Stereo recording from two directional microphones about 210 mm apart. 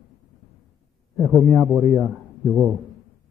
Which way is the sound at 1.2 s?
Centre (ahead or behind).